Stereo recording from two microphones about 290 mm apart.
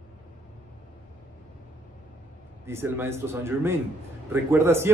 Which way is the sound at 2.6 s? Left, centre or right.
Centre.